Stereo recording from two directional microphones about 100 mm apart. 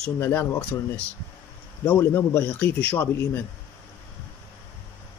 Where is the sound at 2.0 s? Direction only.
25° left (ahead or behind).